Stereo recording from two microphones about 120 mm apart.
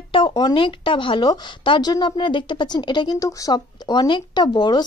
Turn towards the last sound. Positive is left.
turn(degrees=40)  # may be behind; listen again after turning